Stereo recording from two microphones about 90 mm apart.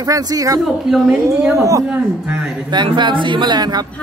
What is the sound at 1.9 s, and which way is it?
Speech, 15° right (ahead or behind).